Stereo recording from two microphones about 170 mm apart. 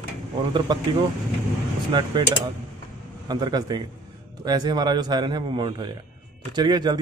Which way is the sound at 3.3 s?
25° right (ahead or behind).